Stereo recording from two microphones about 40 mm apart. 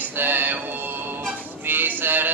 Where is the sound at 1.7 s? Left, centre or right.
Right.